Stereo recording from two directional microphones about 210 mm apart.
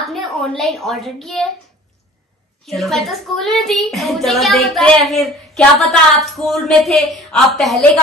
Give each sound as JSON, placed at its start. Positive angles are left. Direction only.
{"t": 0.0, "sound": "a sound", "side_deg": 0}
{"t": 0.6, "sound": "a woman's voice", "side_deg": 0}
{"t": 2.6, "sound": "a woman's voice", "side_deg": 0}